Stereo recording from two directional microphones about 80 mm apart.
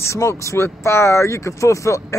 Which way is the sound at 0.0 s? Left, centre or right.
Left.